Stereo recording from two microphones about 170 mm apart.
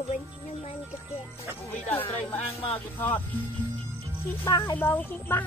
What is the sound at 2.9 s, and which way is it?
Speech, 10° left (ahead or behind).